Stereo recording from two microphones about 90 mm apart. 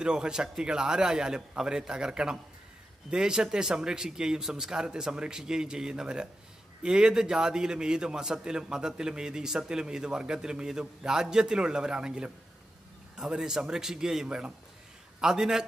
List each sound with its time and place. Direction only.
0.0 s a man's voice: 10° right (ahead or behind)